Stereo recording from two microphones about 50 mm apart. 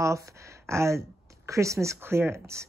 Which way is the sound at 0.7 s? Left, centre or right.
Right.